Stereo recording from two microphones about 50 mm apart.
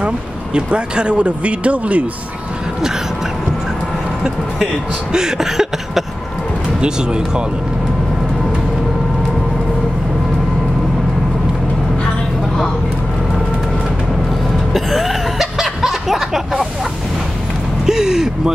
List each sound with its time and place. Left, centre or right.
0.6 s speech: centre
5.1 s a sound: centre
14.7 s cough: centre
15.6 s snicker: centre
17.8 s speech: centre